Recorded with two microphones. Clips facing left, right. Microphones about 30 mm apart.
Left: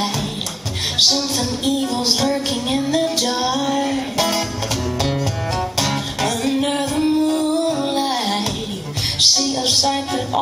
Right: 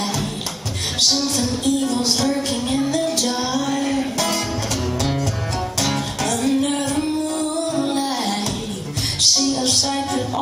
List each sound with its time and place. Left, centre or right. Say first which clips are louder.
0.9 s music: left 2 dB; centre